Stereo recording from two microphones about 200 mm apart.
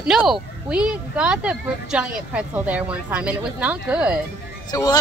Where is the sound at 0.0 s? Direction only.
5° right (ahead or behind).